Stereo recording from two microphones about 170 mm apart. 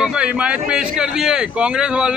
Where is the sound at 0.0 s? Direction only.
5° right (ahead or behind).